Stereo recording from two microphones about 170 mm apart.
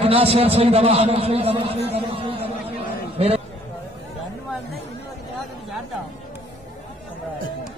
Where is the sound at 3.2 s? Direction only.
35° right (ahead or behind).